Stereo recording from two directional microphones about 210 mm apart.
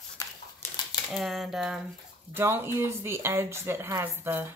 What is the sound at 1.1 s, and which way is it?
Speech, centre (ahead or behind).